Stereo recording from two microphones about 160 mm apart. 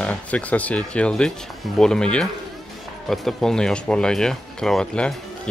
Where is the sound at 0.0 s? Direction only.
10° left (ahead or behind).